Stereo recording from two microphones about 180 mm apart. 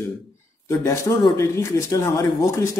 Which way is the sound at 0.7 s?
15° left (ahead or behind).